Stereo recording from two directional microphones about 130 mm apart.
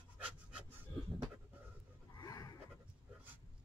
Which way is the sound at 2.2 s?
30° left (ahead or behind).